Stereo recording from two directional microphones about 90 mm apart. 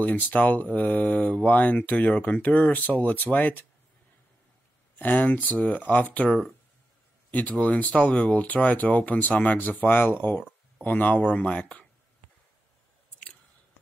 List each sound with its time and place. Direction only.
0.0 s speech: 20° left (ahead or behind)
4.9 s speech: 20° left (ahead or behind)